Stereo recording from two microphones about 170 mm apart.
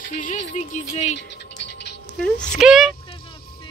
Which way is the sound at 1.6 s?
90° left.